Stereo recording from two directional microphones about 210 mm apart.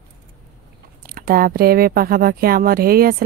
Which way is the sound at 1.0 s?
45° right (ahead or behind).